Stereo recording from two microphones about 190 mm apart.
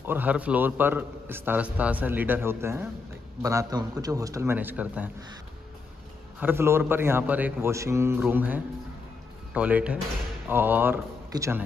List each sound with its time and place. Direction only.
0.0 s a man's voice: 10° right (ahead or behind)
6.4 s a man's voice: 15° right (ahead or behind)